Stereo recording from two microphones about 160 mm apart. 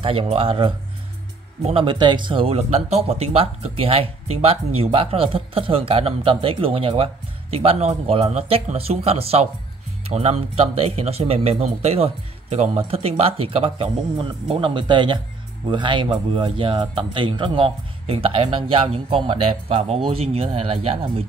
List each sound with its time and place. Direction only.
0.0 s speech: 35° right (ahead or behind)